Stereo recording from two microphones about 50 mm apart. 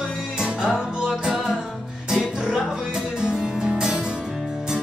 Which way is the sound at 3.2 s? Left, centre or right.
Centre.